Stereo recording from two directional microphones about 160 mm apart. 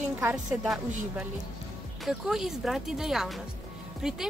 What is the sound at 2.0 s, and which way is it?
Speech, 5° right (ahead or behind).